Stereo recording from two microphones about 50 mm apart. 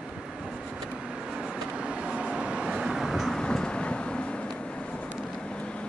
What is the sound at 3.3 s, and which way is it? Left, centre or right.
Vehicle, centre.